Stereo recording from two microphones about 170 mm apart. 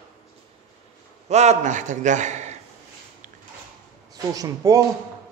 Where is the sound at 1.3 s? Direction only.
40° right (ahead or behind).